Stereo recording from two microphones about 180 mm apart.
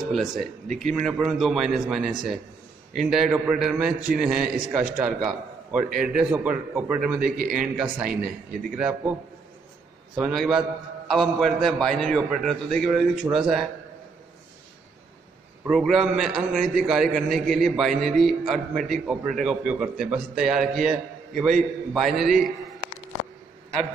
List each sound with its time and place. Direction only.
0.0 s a man's voice: centre (ahead or behind)
7.2 s a man's voice: 55° right (ahead or behind)
7.6 s a man's voice: 5° right (ahead or behind)
10.1 s a man's voice: 5° right (ahead or behind)
15.7 s a man's voice: centre (ahead or behind)